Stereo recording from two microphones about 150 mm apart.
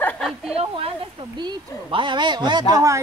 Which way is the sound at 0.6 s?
40° right (ahead or behind).